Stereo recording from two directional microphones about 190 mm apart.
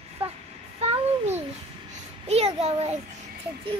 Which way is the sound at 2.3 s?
30° right (ahead or behind).